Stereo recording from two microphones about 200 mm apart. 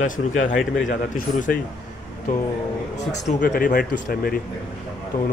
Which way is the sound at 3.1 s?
40° left (ahead or behind).